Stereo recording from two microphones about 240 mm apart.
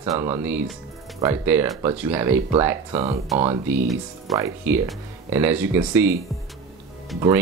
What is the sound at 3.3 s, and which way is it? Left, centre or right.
Speech, right.